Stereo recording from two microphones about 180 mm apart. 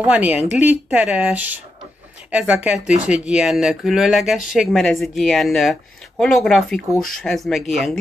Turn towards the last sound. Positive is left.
turn(degrees=0)  # may be behind; listen again after turning